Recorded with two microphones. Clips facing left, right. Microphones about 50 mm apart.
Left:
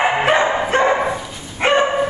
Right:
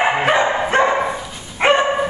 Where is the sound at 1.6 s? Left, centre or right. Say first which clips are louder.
Right 1 dB; centre.